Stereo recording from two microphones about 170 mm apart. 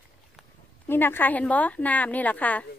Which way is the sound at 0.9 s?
10° left (ahead or behind).